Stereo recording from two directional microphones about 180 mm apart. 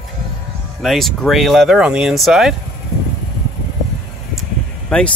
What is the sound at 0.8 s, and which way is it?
Speech, centre (ahead or behind).